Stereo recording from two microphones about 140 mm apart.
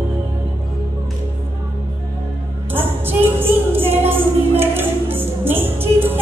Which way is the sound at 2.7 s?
15° right (ahead or behind).